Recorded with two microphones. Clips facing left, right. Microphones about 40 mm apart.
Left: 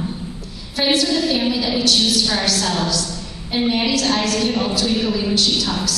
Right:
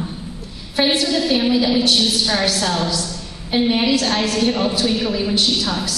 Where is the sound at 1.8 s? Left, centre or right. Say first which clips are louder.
Even; right.